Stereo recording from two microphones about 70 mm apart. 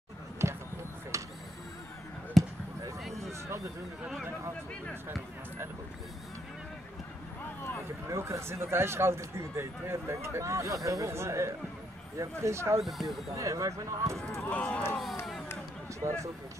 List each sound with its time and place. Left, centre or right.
0.4 s a sound: right
1.1 s mechanisms: right
2.4 s basketball bounce: centre
3.0 s a sound: centre
8.1 s speech: right
12.8 s speech: centre
13.3 s speech: right
14.5 s speech: centre
16.0 s speech: right